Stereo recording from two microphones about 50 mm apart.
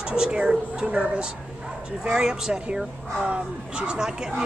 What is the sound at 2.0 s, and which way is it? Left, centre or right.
Speech, centre.